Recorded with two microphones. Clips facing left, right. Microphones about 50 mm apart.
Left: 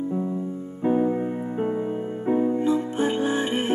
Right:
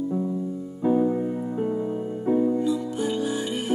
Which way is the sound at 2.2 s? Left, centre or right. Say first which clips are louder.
Even; left.